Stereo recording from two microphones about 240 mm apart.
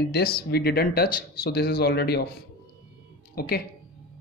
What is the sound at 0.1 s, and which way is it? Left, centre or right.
Speech, left.